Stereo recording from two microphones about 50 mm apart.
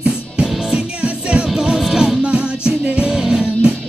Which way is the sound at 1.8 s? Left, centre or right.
Centre.